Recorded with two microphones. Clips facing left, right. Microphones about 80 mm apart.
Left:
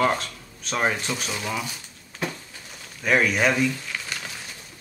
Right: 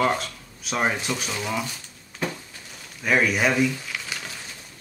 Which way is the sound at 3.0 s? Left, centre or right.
Centre.